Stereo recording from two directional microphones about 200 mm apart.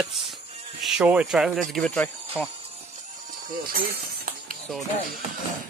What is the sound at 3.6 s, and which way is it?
Music, 45° right (ahead or behind).